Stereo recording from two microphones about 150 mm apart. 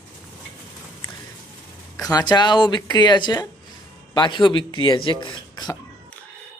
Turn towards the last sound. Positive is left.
turn(degrees=30)  # may be behind; listen again after turning